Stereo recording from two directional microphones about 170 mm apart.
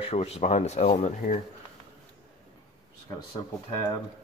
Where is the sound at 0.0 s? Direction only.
35° left (ahead or behind).